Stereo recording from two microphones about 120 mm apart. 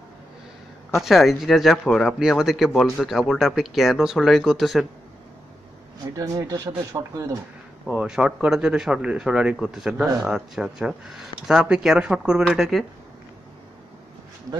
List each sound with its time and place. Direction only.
0.9 s speech: centre (ahead or behind)
6.1 s speech: 30° right (ahead or behind)
7.9 s speech: 10° right (ahead or behind)